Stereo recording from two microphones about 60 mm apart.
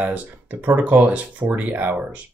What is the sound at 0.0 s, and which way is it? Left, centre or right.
Speech, right.